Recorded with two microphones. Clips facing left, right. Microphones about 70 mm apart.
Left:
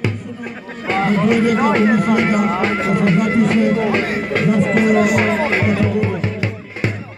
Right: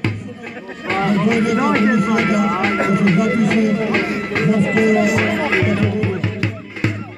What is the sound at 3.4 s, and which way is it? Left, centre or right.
Speech, left.